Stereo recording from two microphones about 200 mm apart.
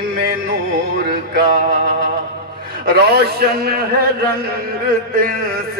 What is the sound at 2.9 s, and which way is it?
Male singing, 55° right (ahead or behind).